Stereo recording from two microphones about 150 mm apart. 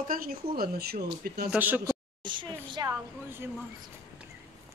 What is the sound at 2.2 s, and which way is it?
Speech, 30° right (ahead or behind).